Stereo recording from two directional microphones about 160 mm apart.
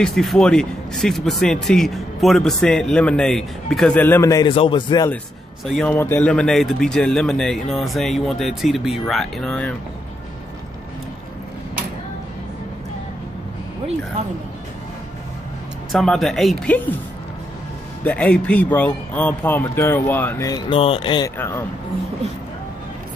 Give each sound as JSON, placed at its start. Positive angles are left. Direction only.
{"t": 0.0, "sound": "a man's voice", "side_deg": 0}
{"t": 5.7, "sound": "speech", "side_deg": 5}
{"t": 15.9, "sound": "speech", "side_deg": 0}
{"t": 18.0, "sound": "a man's voice", "side_deg": 10}
{"t": 21.4, "sound": "speech", "side_deg": 15}